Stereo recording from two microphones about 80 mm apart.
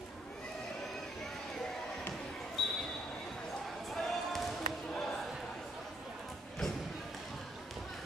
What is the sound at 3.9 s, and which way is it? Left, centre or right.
Basketball bounce, centre.